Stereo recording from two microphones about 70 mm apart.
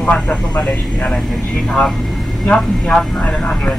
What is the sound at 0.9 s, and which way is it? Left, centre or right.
Speech, centre.